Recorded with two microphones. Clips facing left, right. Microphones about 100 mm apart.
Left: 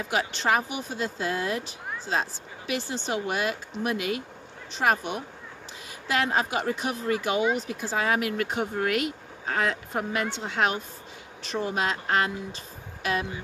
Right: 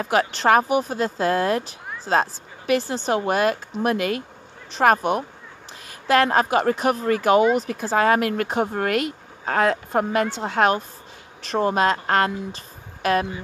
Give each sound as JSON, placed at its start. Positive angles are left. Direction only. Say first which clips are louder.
{"t": 0.0, "sound": "speech", "louder": "right 7 dB", "side_deg": -55}
{"t": 11.4, "sound": "speech", "louder": "right 8 dB", "side_deg": -60}